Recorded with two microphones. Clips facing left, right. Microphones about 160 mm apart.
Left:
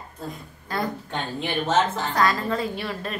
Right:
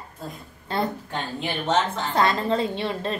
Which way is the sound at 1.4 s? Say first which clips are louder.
Left 1 dB; centre (ahead or behind).